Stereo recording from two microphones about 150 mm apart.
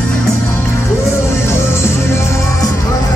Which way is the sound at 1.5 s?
15° left (ahead or behind).